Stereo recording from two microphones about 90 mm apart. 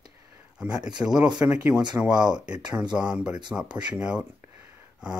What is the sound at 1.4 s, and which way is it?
Speech, 20° right (ahead or behind).